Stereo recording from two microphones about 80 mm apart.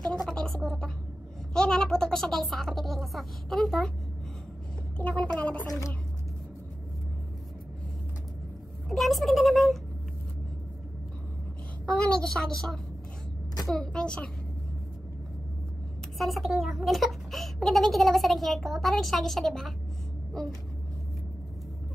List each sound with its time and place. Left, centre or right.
0.0 s a sound: centre
1.5 s a child's voice: centre
4.9 s a woman's voice: centre
8.8 s a child's voice: centre
11.8 s a woman's voice: centre
16.2 s a child's voice: centre